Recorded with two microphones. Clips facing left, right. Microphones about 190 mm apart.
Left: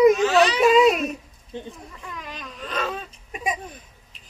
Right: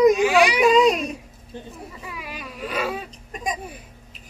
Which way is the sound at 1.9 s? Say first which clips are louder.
Right 1 dB; 10° right (ahead or behind).